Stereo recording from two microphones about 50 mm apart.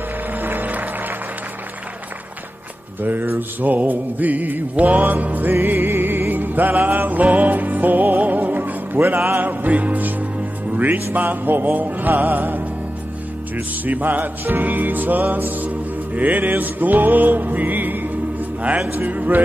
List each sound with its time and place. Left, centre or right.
0.3 s music: right
3.0 s music: right
18.9 s speech: right